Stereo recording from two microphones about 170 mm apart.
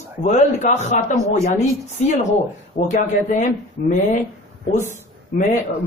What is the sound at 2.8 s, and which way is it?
Speech, 55° left (ahead or behind).